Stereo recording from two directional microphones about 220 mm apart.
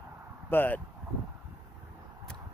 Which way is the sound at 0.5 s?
10° left (ahead or behind).